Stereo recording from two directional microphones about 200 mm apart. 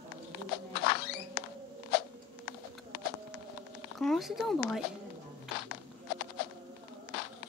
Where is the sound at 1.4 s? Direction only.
55° left (ahead or behind).